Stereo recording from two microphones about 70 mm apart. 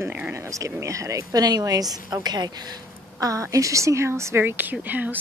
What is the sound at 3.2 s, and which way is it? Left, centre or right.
A woman's voice, right.